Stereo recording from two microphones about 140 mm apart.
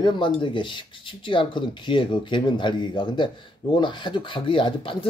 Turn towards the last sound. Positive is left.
turn(degrees=40)  # may be behind; listen again after turning